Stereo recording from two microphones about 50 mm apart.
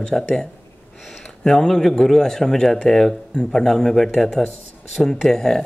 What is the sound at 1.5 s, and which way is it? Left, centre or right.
A man's voice, centre.